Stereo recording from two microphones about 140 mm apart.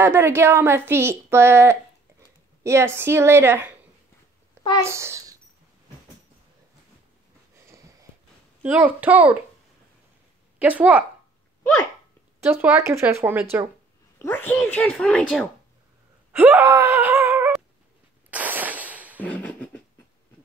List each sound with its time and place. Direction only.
0.0 s speech: 15° right (ahead or behind)
4.8 s a child's voice: 20° right (ahead or behind)
7.6 s a sound: 20° right (ahead or behind)
8.6 s speech: 10° right (ahead or behind)
10.6 s speech: 10° right (ahead or behind)
12.4 s speech: 15° right (ahead or behind)
14.1 s a child's voice: 15° left (ahead or behind)
16.3 s speech: 15° right (ahead or behind)
18.3 s fireworks: 10° right (ahead or behind)
19.2 s beatboxing: 10° left (ahead or behind)